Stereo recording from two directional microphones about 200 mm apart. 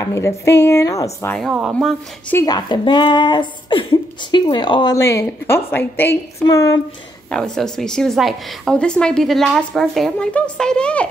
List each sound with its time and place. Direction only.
0.0 s a woman's voice: 15° left (ahead or behind)
2.3 s speech: 20° left (ahead or behind)
7.2 s a woman's voice: 5° left (ahead or behind)